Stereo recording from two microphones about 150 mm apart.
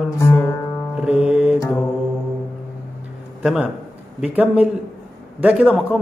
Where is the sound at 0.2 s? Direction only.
15° left (ahead or behind).